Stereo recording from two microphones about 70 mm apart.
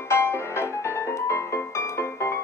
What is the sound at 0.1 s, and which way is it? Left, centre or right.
Music, left.